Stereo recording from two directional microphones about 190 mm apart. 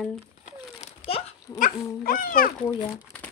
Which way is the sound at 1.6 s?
50° left (ahead or behind).